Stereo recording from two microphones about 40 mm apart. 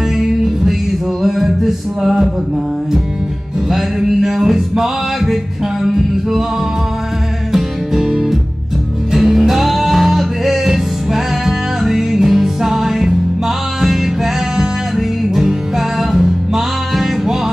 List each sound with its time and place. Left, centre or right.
0.2 s music: centre
3.6 s music: centre
7.5 s music: centre